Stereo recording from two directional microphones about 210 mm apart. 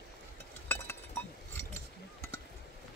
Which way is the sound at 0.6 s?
10° left (ahead or behind).